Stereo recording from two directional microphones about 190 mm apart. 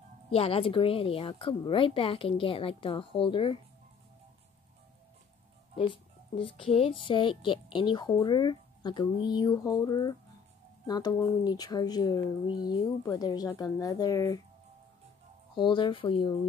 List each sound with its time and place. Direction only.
0.3 s speech: 30° left (ahead or behind)
6.3 s speech: 30° left (ahead or behind)
15.5 s speech: 25° left (ahead or behind)